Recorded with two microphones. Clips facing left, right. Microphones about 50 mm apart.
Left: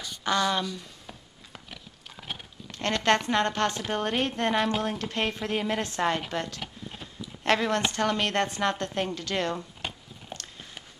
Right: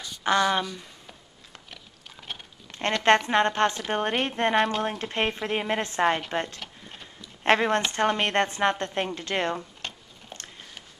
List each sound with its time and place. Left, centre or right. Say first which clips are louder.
0.2 s a woman's voice: right 3 dB; right
1.7 s horse: left 1 dB; centre
3.0 s a woman's voice: right 4 dB; right
6.6 s clip-clop: left 3 dB; centre
7.4 s a woman's voice: right 3 dB; right
9.8 s a sound: left 1 dB; centre
10.3 s biting: left 2 dB; centre